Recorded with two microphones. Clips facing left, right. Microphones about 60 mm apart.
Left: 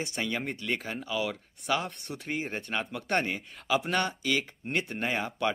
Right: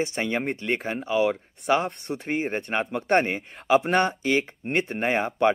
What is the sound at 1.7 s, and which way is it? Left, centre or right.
Speech, right.